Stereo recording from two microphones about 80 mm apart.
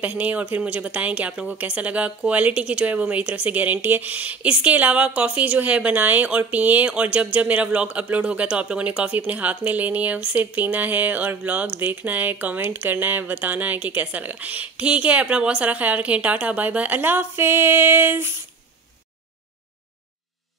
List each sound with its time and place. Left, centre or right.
0.0 s a woman's voice: centre